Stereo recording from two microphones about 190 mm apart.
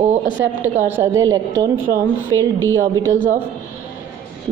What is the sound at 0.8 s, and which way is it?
Speech, 10° right (ahead or behind).